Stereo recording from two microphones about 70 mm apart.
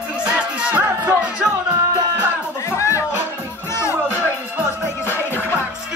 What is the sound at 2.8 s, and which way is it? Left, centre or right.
Music, left.